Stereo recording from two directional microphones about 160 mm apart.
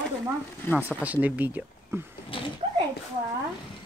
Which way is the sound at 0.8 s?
10° right (ahead or behind).